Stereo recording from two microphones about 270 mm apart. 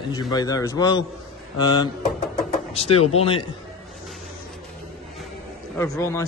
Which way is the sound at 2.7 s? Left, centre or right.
Left.